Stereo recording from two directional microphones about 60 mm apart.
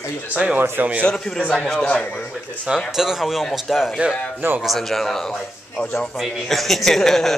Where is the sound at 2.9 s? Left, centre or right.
Centre.